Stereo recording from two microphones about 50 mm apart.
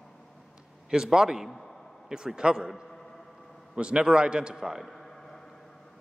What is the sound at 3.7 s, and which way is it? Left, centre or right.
A man's voice, centre.